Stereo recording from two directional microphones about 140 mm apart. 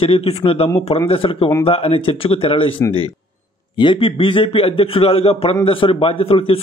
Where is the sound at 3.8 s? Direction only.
35° left (ahead or behind).